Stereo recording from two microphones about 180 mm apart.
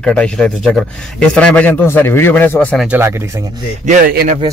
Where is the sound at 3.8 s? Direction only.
50° right (ahead or behind).